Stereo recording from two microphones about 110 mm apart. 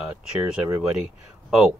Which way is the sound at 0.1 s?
15° right (ahead or behind).